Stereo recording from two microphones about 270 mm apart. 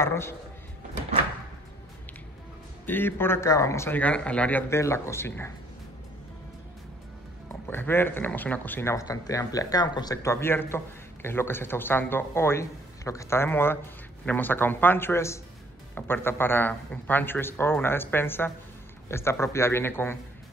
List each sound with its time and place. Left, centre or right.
0.0 s speech: centre
2.9 s speech: centre
7.4 s speech: centre